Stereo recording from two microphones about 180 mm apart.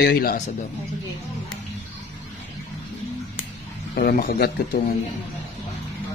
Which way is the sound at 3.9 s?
55° left (ahead or behind).